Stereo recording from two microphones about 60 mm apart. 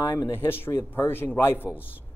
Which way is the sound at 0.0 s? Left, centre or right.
Left.